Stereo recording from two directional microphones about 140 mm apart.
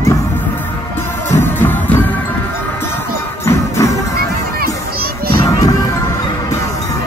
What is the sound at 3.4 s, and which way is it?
Music, 20° left (ahead or behind).